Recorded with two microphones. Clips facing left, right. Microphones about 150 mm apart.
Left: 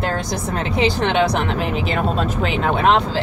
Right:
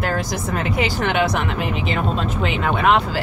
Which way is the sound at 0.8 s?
30° left (ahead or behind).